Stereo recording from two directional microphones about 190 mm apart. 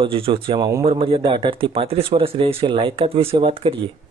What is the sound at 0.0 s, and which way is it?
Speech, 25° right (ahead or behind).